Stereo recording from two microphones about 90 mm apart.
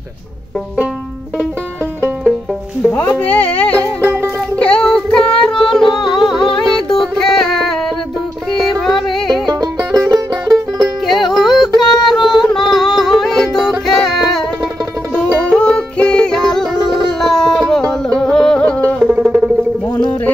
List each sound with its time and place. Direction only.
2.9 s speech: 15° left (ahead or behind)
4.0 s music: 25° right (ahead or behind)
4.6 s music: 10° left (ahead or behind)
9.5 s music: 45° right (ahead or behind)
11.1 s music: centre (ahead or behind)
15.4 s music: 15° left (ahead or behind)
17.2 s a sound: 5° left (ahead or behind)
18.9 s music: 10° right (ahead or behind)